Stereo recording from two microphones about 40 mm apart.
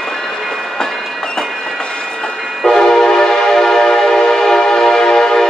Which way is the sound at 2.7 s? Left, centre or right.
Centre.